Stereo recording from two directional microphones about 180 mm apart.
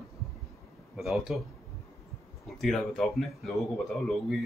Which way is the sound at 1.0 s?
Centre (ahead or behind).